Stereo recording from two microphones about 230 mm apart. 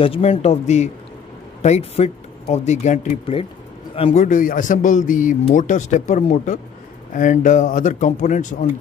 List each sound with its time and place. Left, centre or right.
0.0 s a man's voice: left